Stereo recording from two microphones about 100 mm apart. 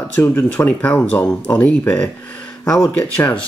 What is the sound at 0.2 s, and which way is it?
Speech, 25° left (ahead or behind).